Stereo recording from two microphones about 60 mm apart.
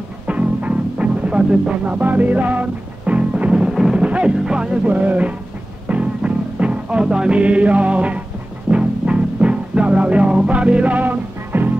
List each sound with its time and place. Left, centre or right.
0.3 s music: right